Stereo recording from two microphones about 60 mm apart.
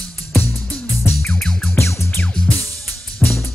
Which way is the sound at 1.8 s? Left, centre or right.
Left.